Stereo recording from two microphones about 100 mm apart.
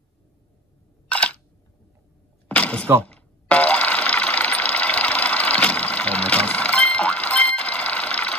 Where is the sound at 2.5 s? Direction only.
10° left (ahead or behind).